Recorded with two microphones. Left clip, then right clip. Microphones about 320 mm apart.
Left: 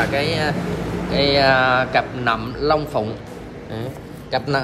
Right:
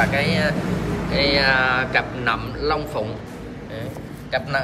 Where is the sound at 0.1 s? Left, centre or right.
Centre.